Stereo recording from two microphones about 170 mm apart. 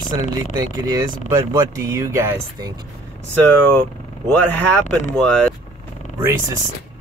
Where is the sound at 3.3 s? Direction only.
10° left (ahead or behind).